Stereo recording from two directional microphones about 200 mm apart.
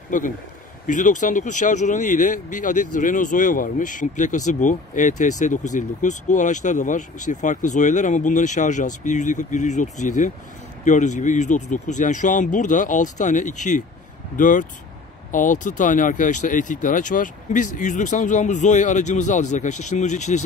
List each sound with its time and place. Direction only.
0.1 s speech: 40° left (ahead or behind)